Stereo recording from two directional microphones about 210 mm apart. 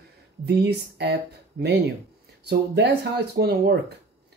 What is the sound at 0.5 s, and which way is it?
Speech, 50° right (ahead or behind).